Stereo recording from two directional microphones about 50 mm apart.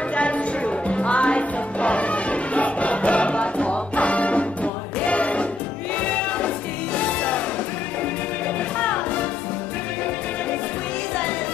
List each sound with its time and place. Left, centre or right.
0.1 s music: left
6.0 s choir: left
7.0 s music: left
8.7 s music: left